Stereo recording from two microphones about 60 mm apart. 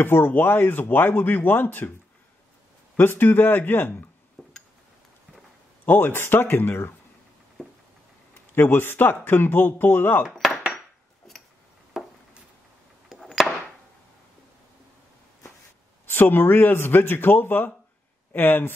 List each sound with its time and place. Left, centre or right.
0.0 s speech: left
3.0 s speech: left
4.4 s a sound: centre
5.9 s speech: left
8.5 s speech: left
10.3 s dishes: centre
11.9 s a sound: centre
13.2 s chop: centre
16.1 s speech: left